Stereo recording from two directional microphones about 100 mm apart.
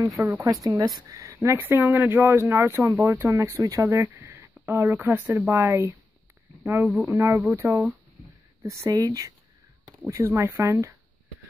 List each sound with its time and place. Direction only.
0.4 s speech: 35° right (ahead or behind)